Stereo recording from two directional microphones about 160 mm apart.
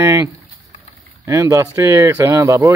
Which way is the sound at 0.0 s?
20° right (ahead or behind).